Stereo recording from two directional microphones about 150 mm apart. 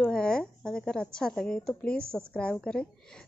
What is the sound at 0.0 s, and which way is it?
A woman's voice, 5° left (ahead or behind).